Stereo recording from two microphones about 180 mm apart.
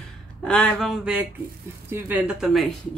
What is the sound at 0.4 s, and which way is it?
Speech, 5° left (ahead or behind).